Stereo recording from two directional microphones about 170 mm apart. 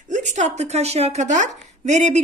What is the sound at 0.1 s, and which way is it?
A woman's voice, 45° right (ahead or behind).